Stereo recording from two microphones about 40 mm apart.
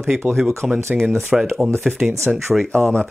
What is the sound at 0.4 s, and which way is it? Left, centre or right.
Speech, centre.